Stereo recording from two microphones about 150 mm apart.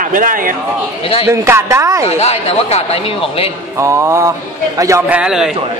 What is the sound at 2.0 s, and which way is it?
Speech, 45° left (ahead or behind).